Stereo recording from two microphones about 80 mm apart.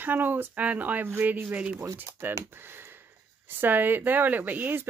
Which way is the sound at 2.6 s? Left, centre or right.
Right.